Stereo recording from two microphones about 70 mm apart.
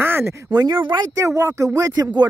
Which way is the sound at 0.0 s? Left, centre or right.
Right.